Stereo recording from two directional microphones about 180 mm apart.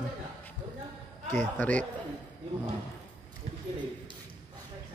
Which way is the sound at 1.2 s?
45° right (ahead or behind).